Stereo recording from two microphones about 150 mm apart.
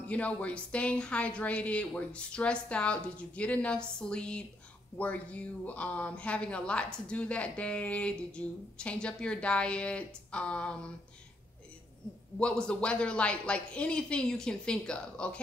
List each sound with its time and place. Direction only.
0.1 s speech: 10° left (ahead or behind)
12.4 s speech: 5° left (ahead or behind)